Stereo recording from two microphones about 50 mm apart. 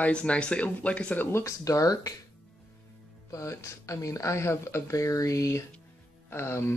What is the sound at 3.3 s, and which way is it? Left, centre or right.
Speech, left.